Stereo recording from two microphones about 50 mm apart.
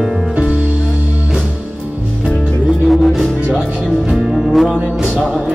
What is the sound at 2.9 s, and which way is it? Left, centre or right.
Music, centre.